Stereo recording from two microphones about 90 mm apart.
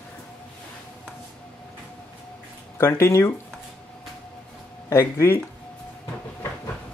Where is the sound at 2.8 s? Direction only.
30° left (ahead or behind).